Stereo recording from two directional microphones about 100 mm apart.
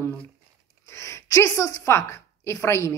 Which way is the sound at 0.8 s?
30° left (ahead or behind).